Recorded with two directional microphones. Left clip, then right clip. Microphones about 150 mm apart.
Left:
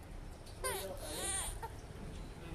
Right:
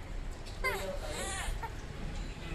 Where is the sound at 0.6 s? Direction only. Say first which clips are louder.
Right 6 dB; 20° left (ahead or behind).